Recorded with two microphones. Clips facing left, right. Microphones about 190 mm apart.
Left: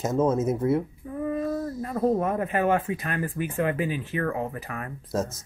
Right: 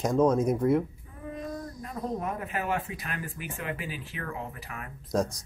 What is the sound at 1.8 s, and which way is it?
Speech, 60° left (ahead or behind).